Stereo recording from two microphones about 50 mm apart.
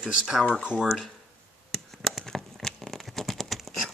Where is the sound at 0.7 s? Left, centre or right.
Centre.